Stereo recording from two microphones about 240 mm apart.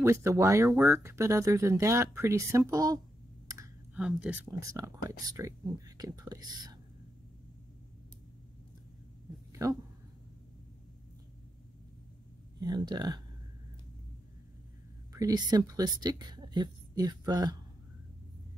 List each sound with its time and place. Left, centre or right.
0.0 s speech: centre
3.5 s clicking: centre
3.9 s speech: centre
9.6 s speech: centre
12.5 s speech: centre
15.1 s speech: centre